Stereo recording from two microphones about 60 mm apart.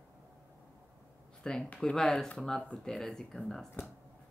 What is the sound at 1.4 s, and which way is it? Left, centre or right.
Speech, centre.